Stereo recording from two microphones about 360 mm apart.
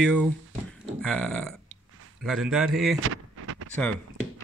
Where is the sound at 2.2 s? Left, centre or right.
Centre.